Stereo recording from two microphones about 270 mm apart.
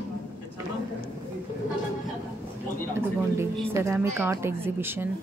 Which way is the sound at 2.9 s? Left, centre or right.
Centre.